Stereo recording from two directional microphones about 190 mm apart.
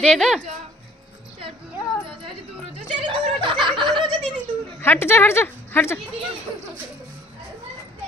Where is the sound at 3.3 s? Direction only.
25° right (ahead or behind).